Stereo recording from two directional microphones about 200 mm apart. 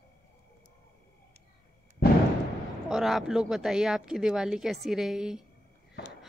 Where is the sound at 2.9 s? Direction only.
Centre (ahead or behind).